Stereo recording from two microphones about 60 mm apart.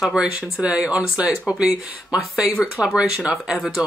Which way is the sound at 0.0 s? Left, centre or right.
Centre.